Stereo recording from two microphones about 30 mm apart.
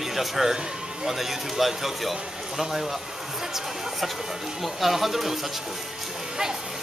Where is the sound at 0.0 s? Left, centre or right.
Centre.